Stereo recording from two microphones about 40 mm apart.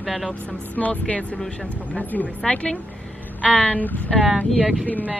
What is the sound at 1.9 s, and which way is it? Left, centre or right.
Speech, left.